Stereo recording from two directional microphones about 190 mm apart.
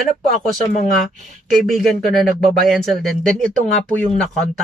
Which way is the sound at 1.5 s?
Centre (ahead or behind).